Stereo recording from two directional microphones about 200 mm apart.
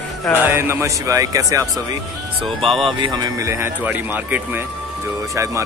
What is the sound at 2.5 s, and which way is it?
Speech, centre (ahead or behind).